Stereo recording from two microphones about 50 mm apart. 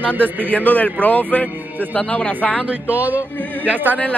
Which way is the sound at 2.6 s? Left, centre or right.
Right.